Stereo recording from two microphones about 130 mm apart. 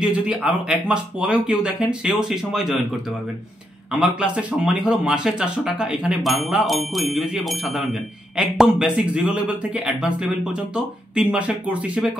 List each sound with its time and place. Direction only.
0.0 s speech: 5° right (ahead or behind)
4.1 s speech: 10° right (ahead or behind)